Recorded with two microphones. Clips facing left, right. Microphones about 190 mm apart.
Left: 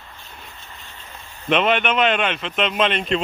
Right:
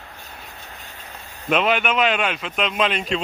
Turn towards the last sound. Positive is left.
turn(degrees=0)  # may be behind; listen again after turning